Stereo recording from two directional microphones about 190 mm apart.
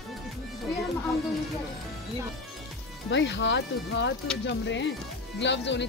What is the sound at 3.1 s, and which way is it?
Speech, 70° left (ahead or behind).